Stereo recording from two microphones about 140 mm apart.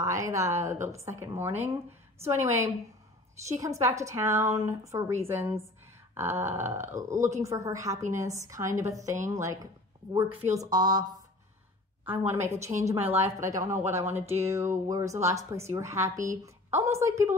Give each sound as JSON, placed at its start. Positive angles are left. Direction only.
{"t": 0.0, "sound": "speech", "side_deg": -20}
{"t": 0.7, "sound": "speech", "side_deg": -55}
{"t": 1.0, "sound": "a woman's voice", "side_deg": -15}
{"t": 12.3, "sound": "speech", "side_deg": -20}